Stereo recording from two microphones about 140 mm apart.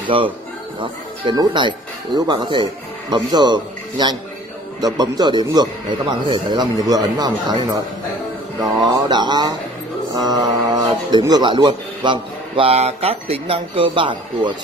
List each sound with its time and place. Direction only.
0.1 s a man's voice: 40° right (ahead or behind)
8.9 s a man's voice: 30° right (ahead or behind)